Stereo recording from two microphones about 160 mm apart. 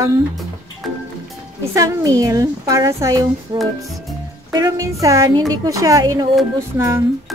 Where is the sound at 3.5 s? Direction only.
30° right (ahead or behind).